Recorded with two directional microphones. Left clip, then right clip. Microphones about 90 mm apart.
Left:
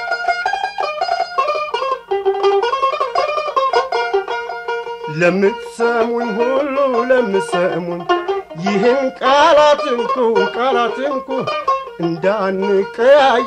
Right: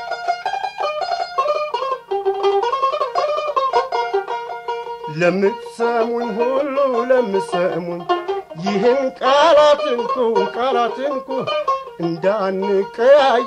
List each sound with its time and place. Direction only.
0.1 s music: 25° right (ahead or behind)
5.2 s music: 50° right (ahead or behind)
9.9 s speech: 30° right (ahead or behind)
10.6 s music: 50° right (ahead or behind)
11.3 s music: 30° right (ahead or behind)
12.0 s music: 55° right (ahead or behind)